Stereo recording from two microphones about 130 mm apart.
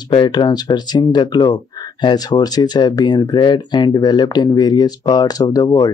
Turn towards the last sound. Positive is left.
turn(degrees=30)  # may be behind; listen again after turning